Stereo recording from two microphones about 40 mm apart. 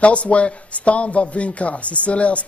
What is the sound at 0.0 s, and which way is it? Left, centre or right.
Speech, left.